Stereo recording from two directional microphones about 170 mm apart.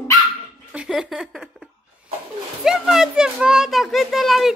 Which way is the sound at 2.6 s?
5° right (ahead or behind).